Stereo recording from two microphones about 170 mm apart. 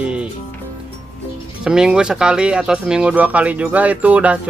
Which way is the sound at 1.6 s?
5° right (ahead or behind).